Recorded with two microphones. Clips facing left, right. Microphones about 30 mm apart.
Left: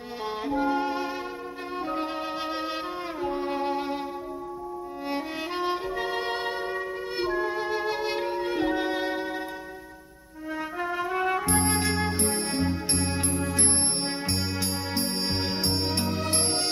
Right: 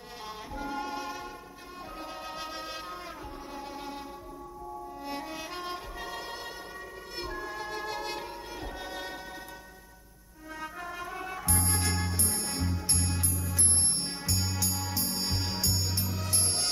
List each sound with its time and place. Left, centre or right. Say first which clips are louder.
0.5 s music: left 10 dB; left
3.2 s music: left 13 dB; left
5.1 s music: left 8 dB; left
7.2 s music: left 10 dB; left
10.8 s music: left 12 dB; left
11.1 s music: left 9 dB; left
11.7 s music: left 6 dB; left
12.2 s music: left 8 dB; left
13.3 s music: left 8 dB; left
14.3 s music: left 4 dB; left
15.7 s music: left 7 dB; left